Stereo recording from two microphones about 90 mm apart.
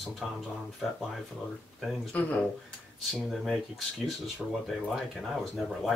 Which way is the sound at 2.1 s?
15° left (ahead or behind).